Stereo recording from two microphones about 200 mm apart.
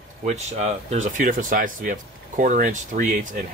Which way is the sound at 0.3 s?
35° right (ahead or behind).